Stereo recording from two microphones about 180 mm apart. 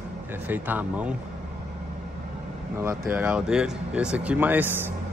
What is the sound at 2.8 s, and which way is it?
Speech, 10° right (ahead or behind).